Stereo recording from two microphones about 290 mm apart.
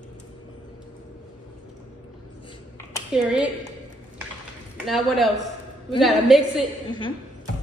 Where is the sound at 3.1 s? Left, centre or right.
Centre.